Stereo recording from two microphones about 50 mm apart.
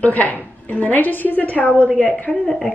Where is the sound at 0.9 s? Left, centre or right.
Left.